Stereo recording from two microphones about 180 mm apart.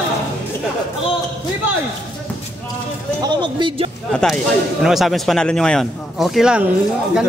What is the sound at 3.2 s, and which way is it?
Speech, 25° right (ahead or behind).